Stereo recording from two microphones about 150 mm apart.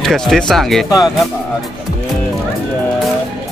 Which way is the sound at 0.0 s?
Centre (ahead or behind).